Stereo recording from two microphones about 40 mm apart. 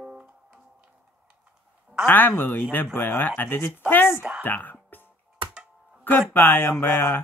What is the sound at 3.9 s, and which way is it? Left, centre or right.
Speech, left.